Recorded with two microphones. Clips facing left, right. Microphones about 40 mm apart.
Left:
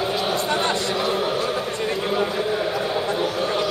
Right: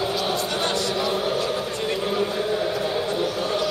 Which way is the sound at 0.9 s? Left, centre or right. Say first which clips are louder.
Left 1 dB; centre.